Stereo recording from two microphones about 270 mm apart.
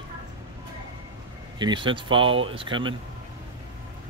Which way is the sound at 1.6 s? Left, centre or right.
Centre.